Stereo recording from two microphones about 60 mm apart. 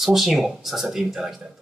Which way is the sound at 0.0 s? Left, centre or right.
Centre.